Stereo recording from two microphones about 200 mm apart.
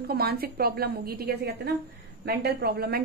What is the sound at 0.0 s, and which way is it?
Speech, 50° right (ahead or behind).